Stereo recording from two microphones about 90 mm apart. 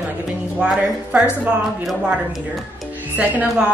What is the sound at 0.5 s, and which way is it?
Speech, 10° right (ahead or behind).